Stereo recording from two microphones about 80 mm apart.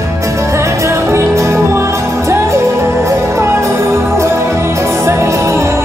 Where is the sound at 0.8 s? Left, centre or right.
Right.